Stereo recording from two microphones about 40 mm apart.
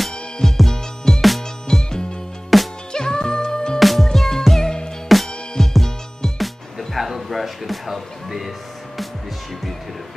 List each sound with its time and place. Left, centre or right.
0.5 s music: centre
1.9 s music: centre
2.5 s music: centre
2.9 s music: centre
3.8 s music: centre